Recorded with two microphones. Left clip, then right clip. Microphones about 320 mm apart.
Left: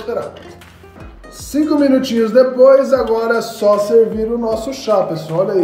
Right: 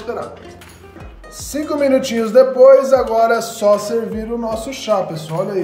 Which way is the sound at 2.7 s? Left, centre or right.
Right.